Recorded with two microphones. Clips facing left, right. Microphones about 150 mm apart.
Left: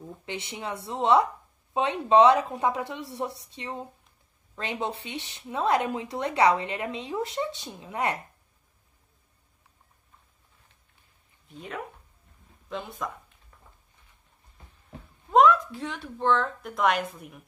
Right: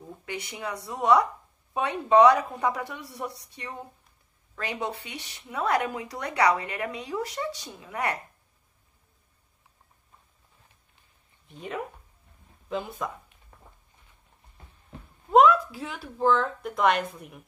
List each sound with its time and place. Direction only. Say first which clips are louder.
0.2 s speech: right 1 dB; 25° left (ahead or behind)
11.4 s speech: right 3 dB; centre (ahead or behind)
15.3 s speech: right 1 dB; 5° right (ahead or behind)